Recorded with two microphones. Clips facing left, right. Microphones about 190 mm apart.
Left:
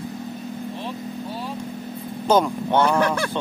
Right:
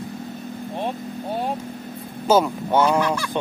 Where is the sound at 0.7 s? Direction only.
55° right (ahead or behind).